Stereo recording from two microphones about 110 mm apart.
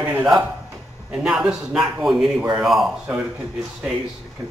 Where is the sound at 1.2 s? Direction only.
5° right (ahead or behind).